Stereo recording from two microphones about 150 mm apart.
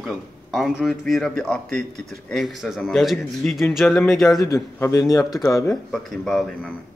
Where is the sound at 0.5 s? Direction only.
Centre (ahead or behind).